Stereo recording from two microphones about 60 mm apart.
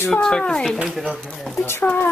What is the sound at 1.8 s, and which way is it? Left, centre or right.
Speech, left.